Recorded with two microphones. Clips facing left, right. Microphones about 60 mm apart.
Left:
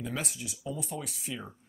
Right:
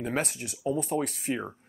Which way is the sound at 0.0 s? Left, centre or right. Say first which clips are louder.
Right 6 dB; right.